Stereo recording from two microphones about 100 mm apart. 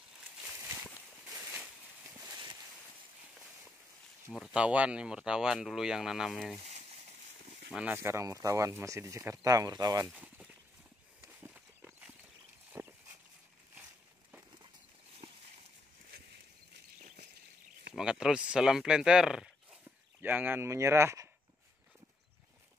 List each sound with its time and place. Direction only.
2.1 s a sound: 35° right (ahead or behind)
4.5 s speech: 10° right (ahead or behind)
7.9 s speech: 25° right (ahead or behind)
10.1 s a sound: 10° right (ahead or behind)
12.7 s dog: 25° right (ahead or behind)
17.9 s speech: 5° right (ahead or behind)
20.2 s speech: 20° right (ahead or behind)